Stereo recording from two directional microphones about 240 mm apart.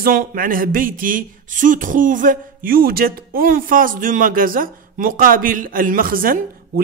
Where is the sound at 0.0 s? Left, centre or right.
Right.